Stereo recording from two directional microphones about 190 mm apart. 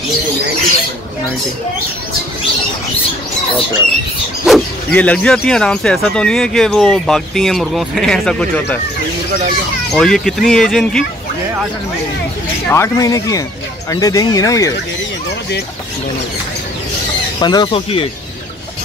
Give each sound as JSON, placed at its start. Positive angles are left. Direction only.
{"t": 4.5, "sound": "speech", "side_deg": 5}
{"t": 9.9, "sound": "speech", "side_deg": 0}
{"t": 12.6, "sound": "speech", "side_deg": 15}
{"t": 17.4, "sound": "speech", "side_deg": 20}